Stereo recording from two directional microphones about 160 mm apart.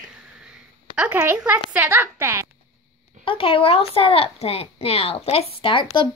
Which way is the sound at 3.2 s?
35° left (ahead or behind).